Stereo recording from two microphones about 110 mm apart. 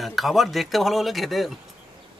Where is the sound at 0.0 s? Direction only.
Centre (ahead or behind).